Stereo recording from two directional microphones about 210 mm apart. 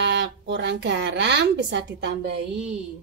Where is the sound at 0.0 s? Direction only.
55° right (ahead or behind).